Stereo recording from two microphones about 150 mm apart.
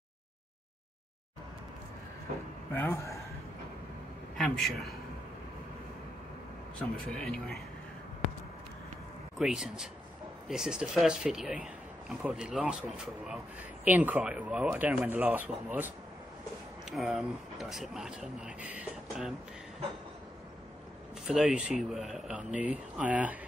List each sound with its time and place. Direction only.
2.7 s a man's voice: 15° left (ahead or behind)
4.4 s speech: centre (ahead or behind)
6.8 s speech: 5° left (ahead or behind)
9.4 s speech: 5° right (ahead or behind)
16.9 s speech: centre (ahead or behind)
21.3 s speech: 5° right (ahead or behind)